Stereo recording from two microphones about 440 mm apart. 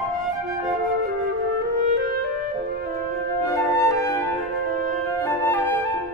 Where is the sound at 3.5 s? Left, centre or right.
Centre.